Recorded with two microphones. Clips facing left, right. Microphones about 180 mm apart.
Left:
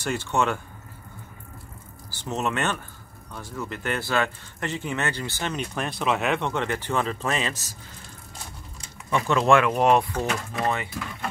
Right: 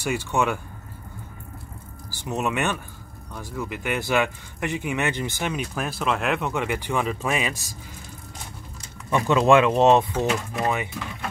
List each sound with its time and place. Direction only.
0.0 s speech: 10° right (ahead or behind)
2.0 s speech: 10° right (ahead or behind)
9.1 s speech: 20° right (ahead or behind)
10.1 s speech: 5° right (ahead or behind)